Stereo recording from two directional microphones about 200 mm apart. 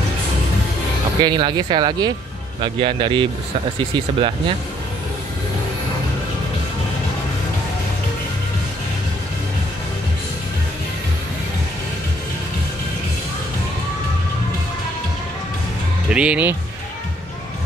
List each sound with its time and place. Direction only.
1.2 s speech: 25° right (ahead or behind)
16.1 s speech: 5° right (ahead or behind)